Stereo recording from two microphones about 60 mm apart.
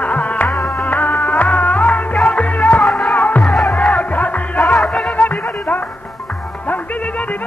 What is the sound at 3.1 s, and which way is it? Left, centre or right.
Music, left.